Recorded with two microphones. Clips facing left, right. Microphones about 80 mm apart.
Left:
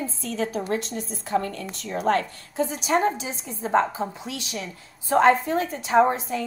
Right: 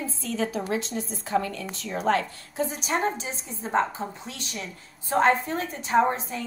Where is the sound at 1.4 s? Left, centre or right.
Left.